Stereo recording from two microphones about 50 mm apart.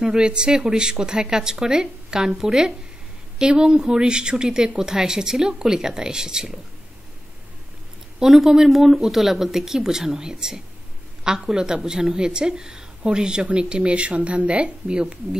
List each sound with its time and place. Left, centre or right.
0.0 s a woman's voice: centre
8.2 s a woman's voice: centre